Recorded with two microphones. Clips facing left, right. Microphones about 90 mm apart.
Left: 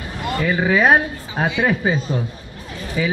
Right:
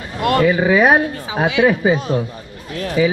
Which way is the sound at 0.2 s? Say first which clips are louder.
Right 8 dB; 80° right.